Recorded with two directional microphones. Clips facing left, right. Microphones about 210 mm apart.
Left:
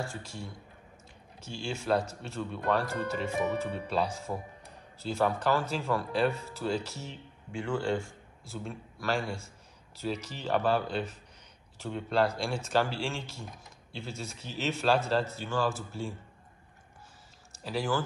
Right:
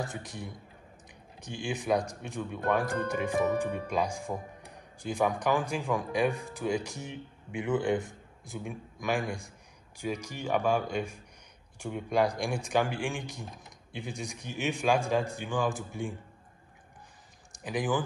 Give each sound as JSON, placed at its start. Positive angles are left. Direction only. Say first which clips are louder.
{"t": 0.0, "sound": "speech", "louder": "right 1 dB", "side_deg": -15}
{"t": 17.5, "sound": "speech", "louder": "right 1 dB", "side_deg": -15}